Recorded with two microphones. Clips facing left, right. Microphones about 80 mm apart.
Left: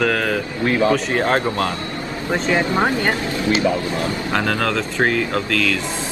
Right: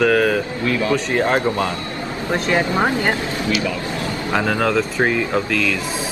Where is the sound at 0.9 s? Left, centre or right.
Centre.